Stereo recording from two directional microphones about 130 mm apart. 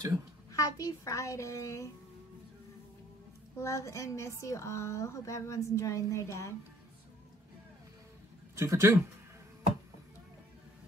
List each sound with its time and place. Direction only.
0.5 s a woman's voice: 25° left (ahead or behind)
3.5 s a woman's voice: 25° left (ahead or behind)
8.5 s speech: 20° right (ahead or behind)